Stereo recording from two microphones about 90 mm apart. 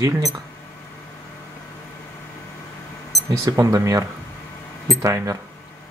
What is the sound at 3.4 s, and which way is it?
Speech, 40° right (ahead or behind).